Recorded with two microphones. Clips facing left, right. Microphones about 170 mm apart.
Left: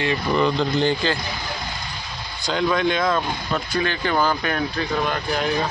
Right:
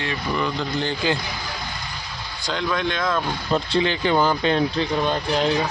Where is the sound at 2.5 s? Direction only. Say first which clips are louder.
Left 4 dB; 5° left (ahead or behind).